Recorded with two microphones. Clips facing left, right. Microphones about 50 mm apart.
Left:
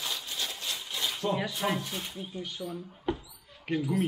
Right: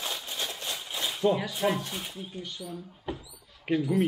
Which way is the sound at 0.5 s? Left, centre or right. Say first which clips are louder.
Right 1 dB; right.